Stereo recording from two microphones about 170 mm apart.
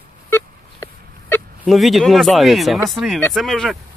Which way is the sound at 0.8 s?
20° left (ahead or behind).